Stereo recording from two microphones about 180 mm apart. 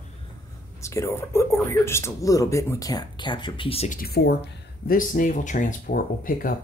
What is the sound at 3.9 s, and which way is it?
Speech, 55° left (ahead or behind).